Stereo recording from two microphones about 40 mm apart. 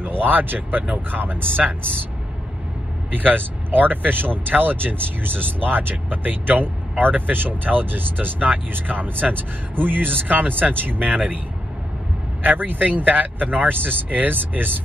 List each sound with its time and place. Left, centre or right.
0.0 s speech: right
3.1 s speech: right
11.1 s speech: right
12.4 s speech: right